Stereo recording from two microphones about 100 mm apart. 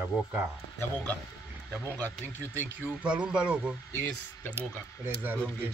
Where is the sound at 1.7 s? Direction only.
20° right (ahead or behind).